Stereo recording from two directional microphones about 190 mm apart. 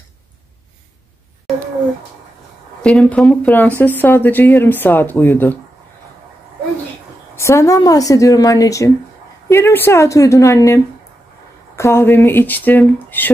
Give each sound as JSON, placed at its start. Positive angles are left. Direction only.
{"t": 2.8, "sound": "speech", "side_deg": 5}
{"t": 7.3, "sound": "speech", "side_deg": 15}